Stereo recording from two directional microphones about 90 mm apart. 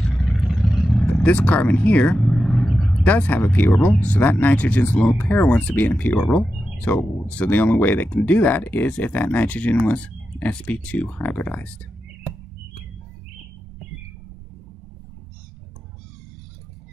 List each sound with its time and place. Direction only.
0.2 s vehicle: centre (ahead or behind)
1.2 s vehicle: 15° left (ahead or behind)
3.1 s speech: 15° left (ahead or behind)